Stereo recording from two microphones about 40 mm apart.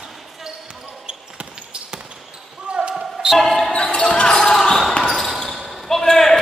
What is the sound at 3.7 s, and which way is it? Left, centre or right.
Basketball bounce, left.